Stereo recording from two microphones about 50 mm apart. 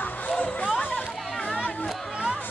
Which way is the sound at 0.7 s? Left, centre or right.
Left.